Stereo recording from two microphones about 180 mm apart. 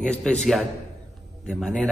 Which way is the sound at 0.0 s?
5° left (ahead or behind).